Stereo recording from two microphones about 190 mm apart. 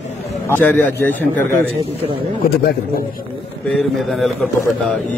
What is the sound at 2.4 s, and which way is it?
Speech, 50° left (ahead or behind).